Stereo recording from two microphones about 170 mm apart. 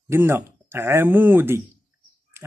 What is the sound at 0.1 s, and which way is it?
Speech, 15° right (ahead or behind).